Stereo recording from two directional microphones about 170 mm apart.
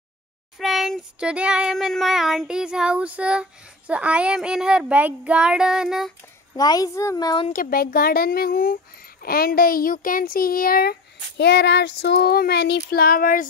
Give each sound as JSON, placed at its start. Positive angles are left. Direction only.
{"t": 0.6, "sound": "child singing", "side_deg": 0}
{"t": 6.5, "sound": "speech", "side_deg": 20}
{"t": 7.4, "sound": "speech", "side_deg": 55}
{"t": 11.3, "sound": "speech", "side_deg": 85}